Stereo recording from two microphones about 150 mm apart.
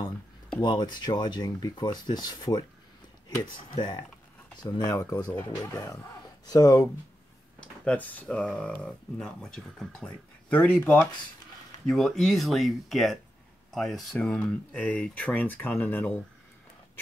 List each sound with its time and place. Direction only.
0.6 s speech: 30° left (ahead or behind)
3.7 s speech: 30° left (ahead or behind)
7.8 s speech: 10° left (ahead or behind)